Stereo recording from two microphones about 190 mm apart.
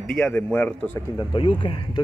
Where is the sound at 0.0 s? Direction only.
5° left (ahead or behind).